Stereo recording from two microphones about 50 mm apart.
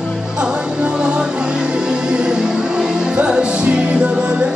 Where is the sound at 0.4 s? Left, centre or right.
Centre.